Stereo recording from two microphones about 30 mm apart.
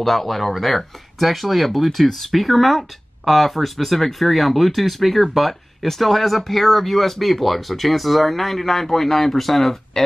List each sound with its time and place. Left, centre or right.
0.0 s speech: centre